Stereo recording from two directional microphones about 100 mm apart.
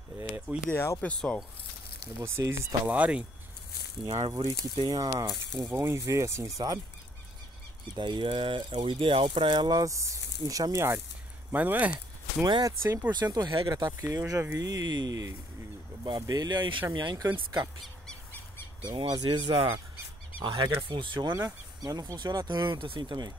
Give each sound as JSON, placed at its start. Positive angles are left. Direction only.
{"t": 0.2, "sound": "a sound", "side_deg": -20}
{"t": 0.7, "sound": "speech", "side_deg": 20}
{"t": 2.2, "sound": "speech", "side_deg": -25}
{"t": 2.9, "sound": "speech", "side_deg": -15}
{"t": 4.0, "sound": "speech", "side_deg": -40}
{"t": 5.3, "sound": "speech", "side_deg": 5}
{"t": 5.7, "sound": "speech", "side_deg": -30}
{"t": 7.9, "sound": "speech", "side_deg": -50}
{"t": 11.5, "sound": "speech", "side_deg": -15}
{"t": 12.6, "sound": "speech", "side_deg": -30}
{"t": 13.1, "sound": "speech", "side_deg": -45}
{"t": 18.9, "sound": "speech", "side_deg": -45}